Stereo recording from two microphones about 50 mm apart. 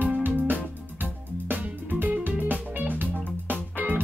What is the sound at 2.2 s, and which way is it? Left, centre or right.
Music, right.